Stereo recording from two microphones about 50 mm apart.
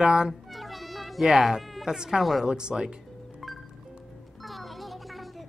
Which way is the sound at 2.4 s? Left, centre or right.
Centre.